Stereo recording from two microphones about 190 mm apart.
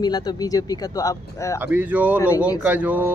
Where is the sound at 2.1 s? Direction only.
15° left (ahead or behind).